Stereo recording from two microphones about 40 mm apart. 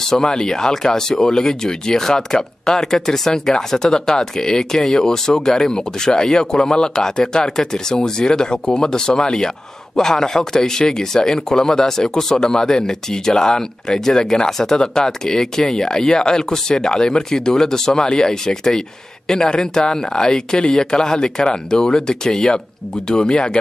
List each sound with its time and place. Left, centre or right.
0.0 s speech: centre